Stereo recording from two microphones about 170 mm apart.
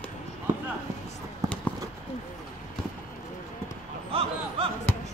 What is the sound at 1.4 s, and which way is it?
Clip-clop, 20° right (ahead or behind).